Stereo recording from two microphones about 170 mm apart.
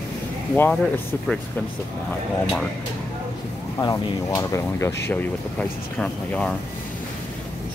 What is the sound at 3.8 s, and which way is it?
Speech, 20° left (ahead or behind).